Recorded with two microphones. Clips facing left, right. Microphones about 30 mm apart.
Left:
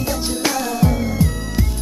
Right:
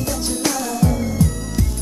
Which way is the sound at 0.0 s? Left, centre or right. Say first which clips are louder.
Left 1 dB; left.